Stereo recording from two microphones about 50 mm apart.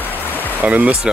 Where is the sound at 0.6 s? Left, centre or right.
Right.